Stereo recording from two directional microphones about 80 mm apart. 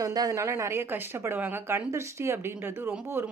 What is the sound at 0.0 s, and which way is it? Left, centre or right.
Speech, right.